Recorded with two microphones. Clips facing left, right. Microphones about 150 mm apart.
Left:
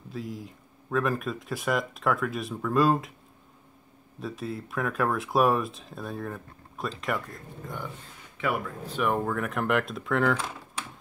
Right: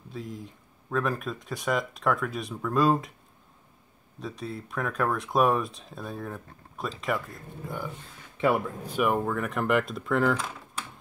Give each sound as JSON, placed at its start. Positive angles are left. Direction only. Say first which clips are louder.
{"t": 0.1, "sound": "speech", "louder": "left 2 dB", "side_deg": 0}
{"t": 4.2, "sound": "speech", "louder": "left 2 dB", "side_deg": 0}
{"t": 8.4, "sound": "a man's voice", "louder": "right 5 dB", "side_deg": -25}
{"t": 8.8, "sound": "speech", "louder": "even", "side_deg": -10}